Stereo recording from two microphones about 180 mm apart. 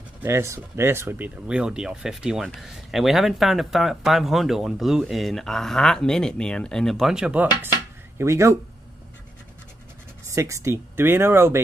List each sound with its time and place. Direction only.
0.2 s speech: 15° right (ahead or behind)
10.2 s speech: 15° right (ahead or behind)